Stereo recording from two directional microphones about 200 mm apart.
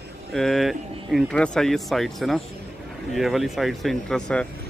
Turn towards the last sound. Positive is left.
turn(degrees=5)  # may be behind; listen again after turning